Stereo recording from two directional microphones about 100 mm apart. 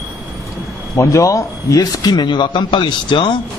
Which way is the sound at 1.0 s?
30° left (ahead or behind).